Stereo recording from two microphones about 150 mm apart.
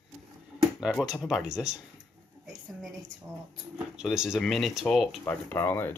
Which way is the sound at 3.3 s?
5° right (ahead or behind).